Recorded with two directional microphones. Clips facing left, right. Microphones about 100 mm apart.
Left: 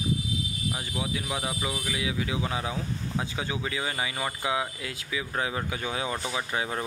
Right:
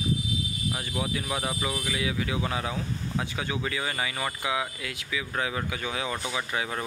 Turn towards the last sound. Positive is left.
turn(degrees=25)  # may be behind; listen again after turning